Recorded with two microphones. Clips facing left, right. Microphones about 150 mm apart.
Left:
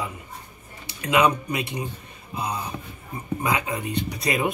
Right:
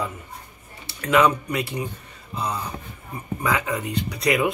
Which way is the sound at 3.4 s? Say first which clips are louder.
Right 2 dB; 20° left (ahead or behind).